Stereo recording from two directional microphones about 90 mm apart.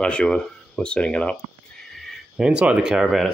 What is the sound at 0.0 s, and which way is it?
Speech, 10° left (ahead or behind).